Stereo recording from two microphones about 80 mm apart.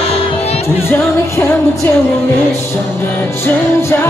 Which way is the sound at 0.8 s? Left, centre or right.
Left.